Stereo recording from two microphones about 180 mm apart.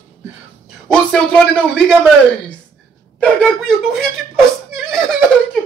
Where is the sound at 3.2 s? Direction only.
Centre (ahead or behind).